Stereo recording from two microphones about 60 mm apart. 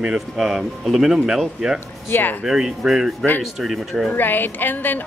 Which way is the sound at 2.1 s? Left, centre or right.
Left.